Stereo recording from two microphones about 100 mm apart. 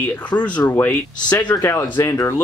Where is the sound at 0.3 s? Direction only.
15° left (ahead or behind).